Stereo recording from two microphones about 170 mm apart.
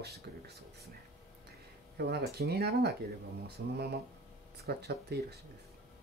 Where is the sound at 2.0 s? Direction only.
70° right (ahead or behind).